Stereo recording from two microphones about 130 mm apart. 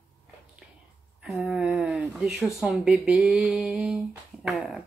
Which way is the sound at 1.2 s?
Centre (ahead or behind).